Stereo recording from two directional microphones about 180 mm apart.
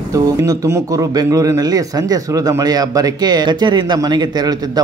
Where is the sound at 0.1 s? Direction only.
15° right (ahead or behind).